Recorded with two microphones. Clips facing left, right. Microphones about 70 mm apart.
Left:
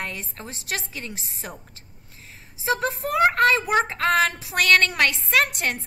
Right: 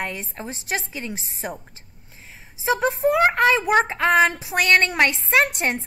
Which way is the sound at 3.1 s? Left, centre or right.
Centre.